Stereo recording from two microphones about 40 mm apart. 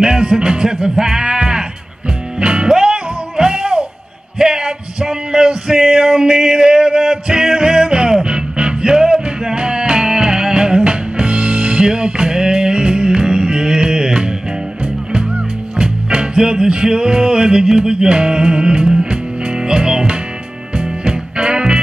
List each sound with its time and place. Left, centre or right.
0.0 s music: centre
15.7 s music: right